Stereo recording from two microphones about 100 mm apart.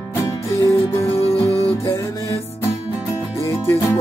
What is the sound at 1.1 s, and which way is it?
Music, 75° left (ahead or behind).